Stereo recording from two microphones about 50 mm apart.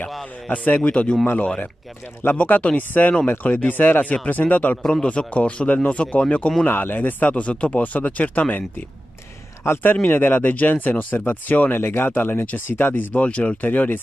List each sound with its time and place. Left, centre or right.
0.5 s speech: left
2.3 s speech: left
6.6 s speech: left
9.6 s speech: left
10.0 s speech: left